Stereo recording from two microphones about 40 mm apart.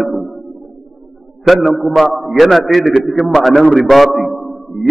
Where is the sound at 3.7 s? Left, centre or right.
Centre.